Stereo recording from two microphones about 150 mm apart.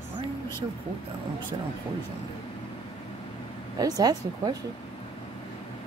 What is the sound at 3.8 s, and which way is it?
Speech, 25° right (ahead or behind).